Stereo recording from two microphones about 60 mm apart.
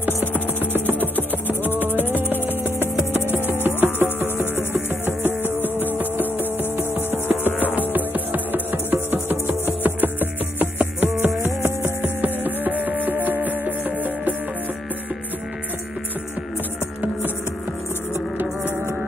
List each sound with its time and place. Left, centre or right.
2.0 s music: right
3.6 s music: right
5.4 s music: left
5.9 s music: right
12.0 s music: right